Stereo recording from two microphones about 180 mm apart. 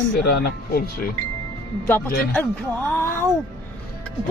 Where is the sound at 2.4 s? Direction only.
10° left (ahead or behind).